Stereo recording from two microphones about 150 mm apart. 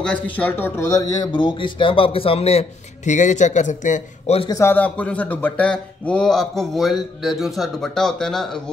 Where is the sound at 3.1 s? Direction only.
55° left (ahead or behind).